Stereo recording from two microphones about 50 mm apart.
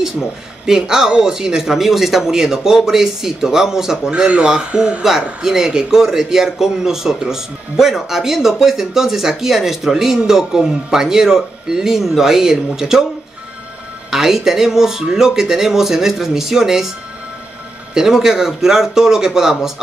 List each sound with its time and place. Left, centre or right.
0.7 s a man's voice: centre
4.1 s speech: right
5.0 s a man's voice: centre
14.1 s a man's voice: centre
17.9 s a man's voice: centre